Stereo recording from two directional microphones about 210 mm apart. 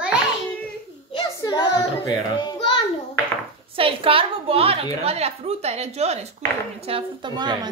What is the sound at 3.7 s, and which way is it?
A woman's voice, 25° right (ahead or behind).